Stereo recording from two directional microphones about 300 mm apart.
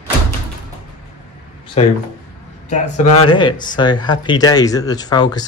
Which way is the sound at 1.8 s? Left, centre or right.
Centre.